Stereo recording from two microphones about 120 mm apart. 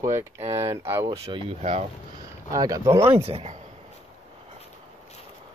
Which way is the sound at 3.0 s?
60° right (ahead or behind).